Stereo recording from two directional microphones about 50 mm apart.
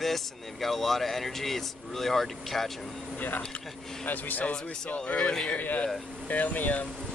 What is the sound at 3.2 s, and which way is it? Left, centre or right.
Speech, left.